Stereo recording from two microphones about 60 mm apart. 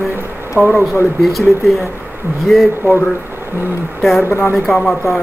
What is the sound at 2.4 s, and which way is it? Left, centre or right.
Speech, centre.